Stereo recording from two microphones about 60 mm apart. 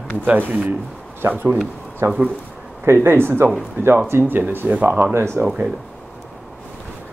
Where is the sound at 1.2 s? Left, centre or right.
Right.